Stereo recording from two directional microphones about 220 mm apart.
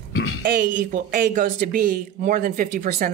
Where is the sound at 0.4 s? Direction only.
50° right (ahead or behind).